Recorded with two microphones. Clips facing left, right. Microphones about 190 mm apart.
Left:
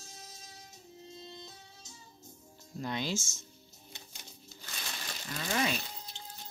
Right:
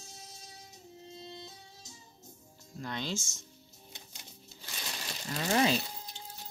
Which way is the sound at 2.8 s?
10° left (ahead or behind).